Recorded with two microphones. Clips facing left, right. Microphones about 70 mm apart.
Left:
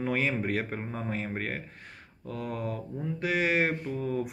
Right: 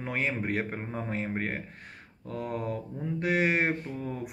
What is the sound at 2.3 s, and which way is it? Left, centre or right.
Speech, right.